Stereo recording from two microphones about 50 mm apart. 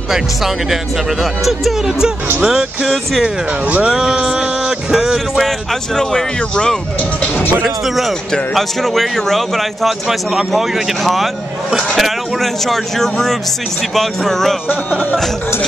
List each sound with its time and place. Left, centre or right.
0.1 s a man's voice: centre
2.4 s a sound: centre
2.9 s a man's voice: centre
3.8 s a sound: centre
5.4 s speech: centre
7.6 s a man's voice: centre
14.7 s speech: left